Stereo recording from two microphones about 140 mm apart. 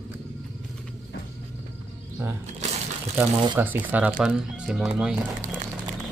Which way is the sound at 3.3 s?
35° right (ahead or behind).